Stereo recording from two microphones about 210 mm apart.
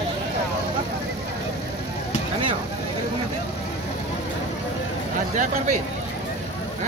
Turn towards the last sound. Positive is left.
turn(degrees=-40)  # may be behind; listen again after turning